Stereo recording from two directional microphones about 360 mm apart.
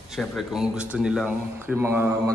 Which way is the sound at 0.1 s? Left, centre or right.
Centre.